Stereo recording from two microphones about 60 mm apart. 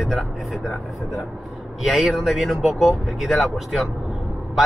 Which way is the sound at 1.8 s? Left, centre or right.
Centre.